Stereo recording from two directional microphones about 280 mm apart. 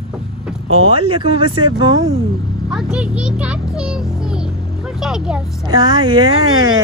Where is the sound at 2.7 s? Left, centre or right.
Centre.